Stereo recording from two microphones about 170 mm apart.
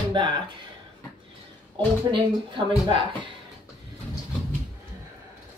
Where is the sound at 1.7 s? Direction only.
30° right (ahead or behind).